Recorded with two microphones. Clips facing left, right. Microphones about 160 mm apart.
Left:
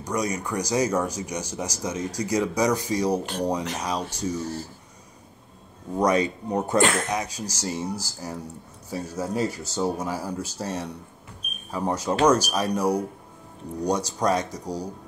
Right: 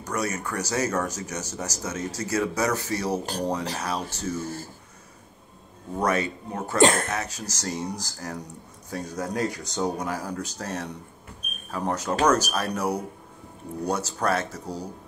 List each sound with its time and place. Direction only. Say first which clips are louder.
0.0 s speech: left 2 dB; 15° left (ahead or behind)
5.9 s speech: left 3 dB; 15° left (ahead or behind)
6.8 s speech: right 5 dB; 35° right (ahead or behind)
7.1 s speech: left 3 dB; 15° left (ahead or behind)